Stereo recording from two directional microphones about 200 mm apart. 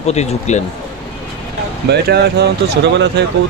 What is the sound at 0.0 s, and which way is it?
Speech, 35° left (ahead or behind).